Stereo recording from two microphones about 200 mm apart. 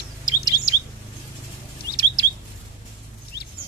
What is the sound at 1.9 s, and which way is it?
Chirp, 20° left (ahead or behind).